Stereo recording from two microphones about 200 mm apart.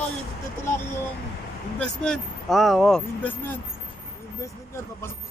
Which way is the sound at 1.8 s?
5° left (ahead or behind).